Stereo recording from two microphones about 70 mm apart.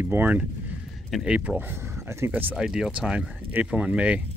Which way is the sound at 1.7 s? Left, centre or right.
Right.